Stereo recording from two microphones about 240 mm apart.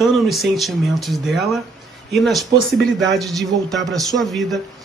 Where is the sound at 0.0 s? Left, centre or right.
Centre.